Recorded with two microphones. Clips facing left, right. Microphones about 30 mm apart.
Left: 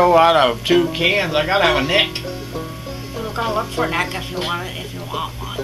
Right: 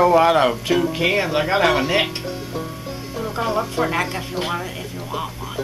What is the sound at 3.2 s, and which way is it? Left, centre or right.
Speech, centre.